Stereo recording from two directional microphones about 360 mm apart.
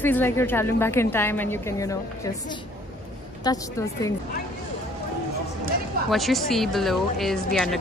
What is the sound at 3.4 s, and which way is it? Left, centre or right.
Speech, centre.